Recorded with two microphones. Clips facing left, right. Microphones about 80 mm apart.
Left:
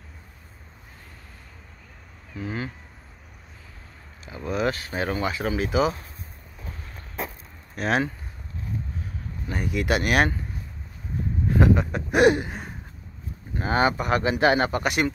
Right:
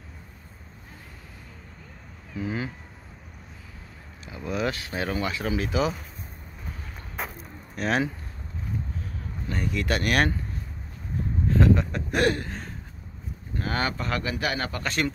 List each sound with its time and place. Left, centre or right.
2.3 s speech: centre
4.3 s speech: centre
7.7 s speech: centre
9.5 s speech: centre
11.4 s speech: centre